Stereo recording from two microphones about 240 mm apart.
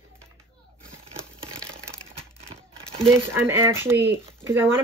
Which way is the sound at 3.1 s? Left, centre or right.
Centre.